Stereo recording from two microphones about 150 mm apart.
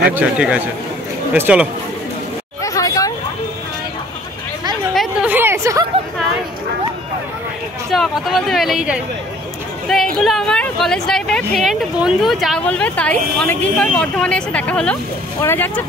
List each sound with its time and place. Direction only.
0.1 s a man's voice: 10° right (ahead or behind)
2.6 s hubbub: 20° left (ahead or behind)
5.2 s a sound: 15° right (ahead or behind)
7.9 s speech: centre (ahead or behind)
9.8 s a sound: centre (ahead or behind)
11.5 s speech: centre (ahead or behind)